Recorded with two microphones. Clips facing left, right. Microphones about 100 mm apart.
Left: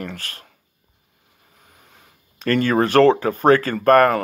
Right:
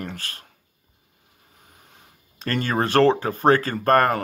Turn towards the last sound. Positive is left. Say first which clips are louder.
# left 4 dB
turn(degrees=-30)  # may be behind; listen again after turning